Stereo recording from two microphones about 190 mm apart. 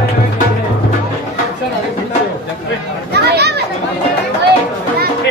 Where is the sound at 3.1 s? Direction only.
60° right (ahead or behind).